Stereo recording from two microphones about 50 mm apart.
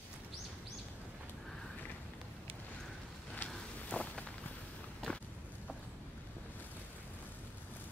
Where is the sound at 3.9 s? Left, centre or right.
Left.